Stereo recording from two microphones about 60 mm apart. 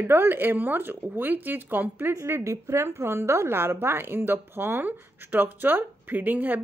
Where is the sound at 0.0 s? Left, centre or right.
Right.